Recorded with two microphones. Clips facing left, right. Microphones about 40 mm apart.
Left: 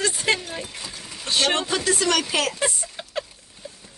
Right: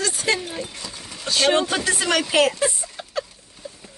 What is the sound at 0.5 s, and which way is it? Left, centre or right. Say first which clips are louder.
Speech: right 2 dB; centre.